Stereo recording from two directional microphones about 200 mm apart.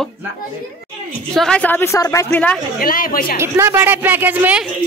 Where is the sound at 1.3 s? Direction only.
5° left (ahead or behind).